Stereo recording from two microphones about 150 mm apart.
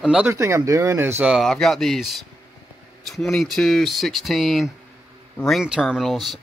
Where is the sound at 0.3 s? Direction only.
20° right (ahead or behind).